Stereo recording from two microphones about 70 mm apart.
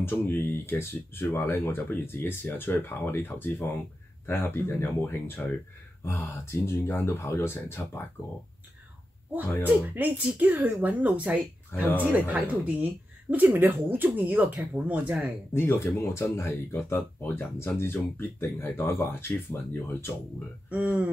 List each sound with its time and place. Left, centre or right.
0.0 s speech: left
9.7 s speech: right
15.5 s speech: left
20.7 s speech: right